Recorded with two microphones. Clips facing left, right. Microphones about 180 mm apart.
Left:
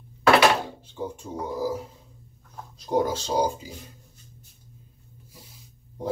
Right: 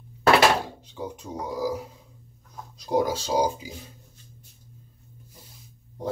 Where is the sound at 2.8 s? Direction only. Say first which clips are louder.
Even; 10° right (ahead or behind).